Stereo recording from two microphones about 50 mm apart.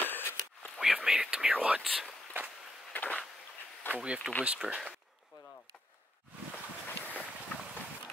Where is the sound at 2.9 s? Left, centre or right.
Left.